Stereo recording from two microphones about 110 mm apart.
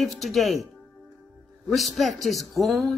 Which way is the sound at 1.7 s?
Centre (ahead or behind).